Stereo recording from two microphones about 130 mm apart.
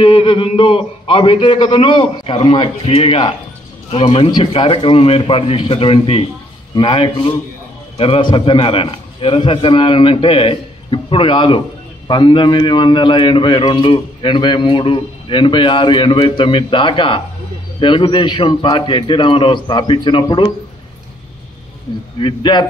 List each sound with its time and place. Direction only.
0.0 s a man's voice: 40° left (ahead or behind)
22.2 s a man's voice: 35° left (ahead or behind)